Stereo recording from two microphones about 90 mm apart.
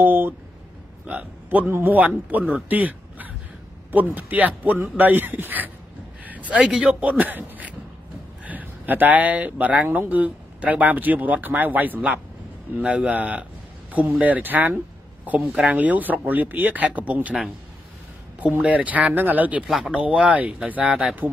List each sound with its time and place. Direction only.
0.0 s a sound: 20° right (ahead or behind)
1.0 s speech: 15° right (ahead or behind)
6.5 s speech: 5° right (ahead or behind)
18.4 s speech: 15° right (ahead or behind)